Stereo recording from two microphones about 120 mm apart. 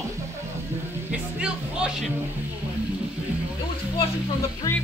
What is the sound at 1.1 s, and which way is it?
Music, 10° right (ahead or behind).